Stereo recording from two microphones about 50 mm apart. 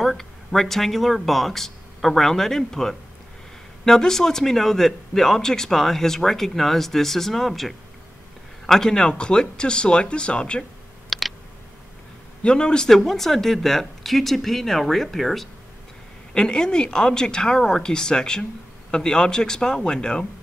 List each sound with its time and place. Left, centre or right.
0.0 s speech: centre; by 10.6 s left
11.1 s a sound: centre
12.4 s speech: centre
16.3 s speech: centre